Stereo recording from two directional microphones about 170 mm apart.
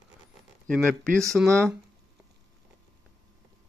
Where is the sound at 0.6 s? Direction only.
5° left (ahead or behind).